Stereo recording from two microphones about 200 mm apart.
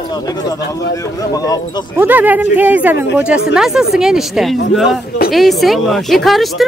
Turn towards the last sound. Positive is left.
turn(degrees=0)  # may be behind; listen again after turning